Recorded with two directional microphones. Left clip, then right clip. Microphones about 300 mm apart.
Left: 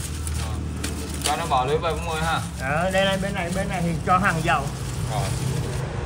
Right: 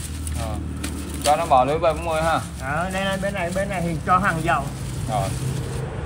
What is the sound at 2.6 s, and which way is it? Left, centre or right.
Speech, centre.